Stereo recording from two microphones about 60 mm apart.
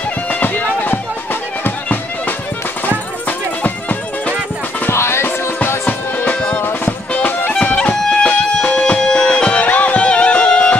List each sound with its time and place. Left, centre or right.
0.3 s music: left
4.9 s music: left
7.1 s music: left